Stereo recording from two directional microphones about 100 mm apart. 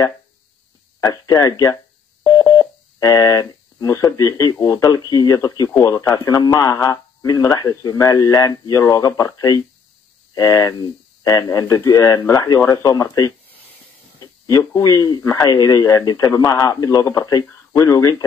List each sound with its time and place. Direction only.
1.0 s speech: 40° left (ahead or behind)
14.5 s speech: 35° left (ahead or behind)